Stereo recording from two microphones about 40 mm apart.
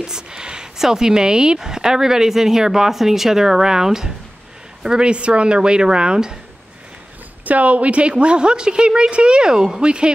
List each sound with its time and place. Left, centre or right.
0.0 s a sound: centre
0.7 s a woman's voice: centre
4.8 s a woman's voice: right
7.4 s a woman's voice: right